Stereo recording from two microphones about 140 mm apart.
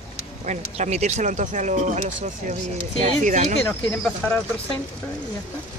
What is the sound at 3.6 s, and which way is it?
Speech, 10° left (ahead or behind).